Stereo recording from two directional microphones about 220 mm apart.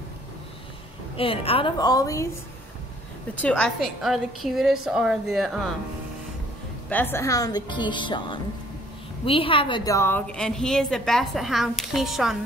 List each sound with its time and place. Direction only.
1.1 s speech: 25° left (ahead or behind)
3.3 s a woman's voice: 5° left (ahead or behind)
6.9 s a woman's voice: 10° left (ahead or behind)